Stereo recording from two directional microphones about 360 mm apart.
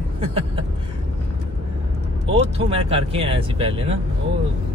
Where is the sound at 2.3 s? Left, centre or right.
Centre.